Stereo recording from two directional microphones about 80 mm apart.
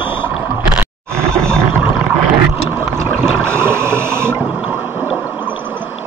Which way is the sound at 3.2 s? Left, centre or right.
Right.